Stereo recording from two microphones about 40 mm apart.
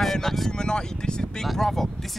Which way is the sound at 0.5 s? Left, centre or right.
Centre.